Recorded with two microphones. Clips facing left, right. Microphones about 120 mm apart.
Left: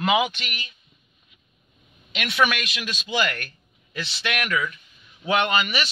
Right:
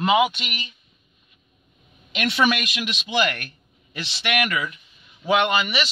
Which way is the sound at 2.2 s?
25° right (ahead or behind).